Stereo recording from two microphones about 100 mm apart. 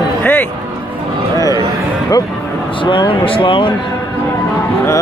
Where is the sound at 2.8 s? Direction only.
55° left (ahead or behind).